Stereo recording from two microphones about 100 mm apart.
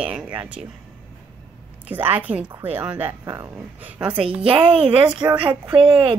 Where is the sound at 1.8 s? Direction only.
15° right (ahead or behind).